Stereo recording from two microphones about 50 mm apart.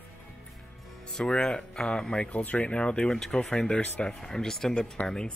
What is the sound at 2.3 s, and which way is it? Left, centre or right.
Speech, left.